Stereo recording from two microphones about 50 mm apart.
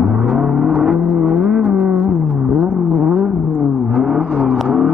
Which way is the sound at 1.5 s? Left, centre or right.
Centre.